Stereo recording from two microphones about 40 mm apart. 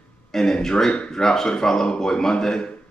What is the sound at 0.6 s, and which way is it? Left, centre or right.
Speech, centre.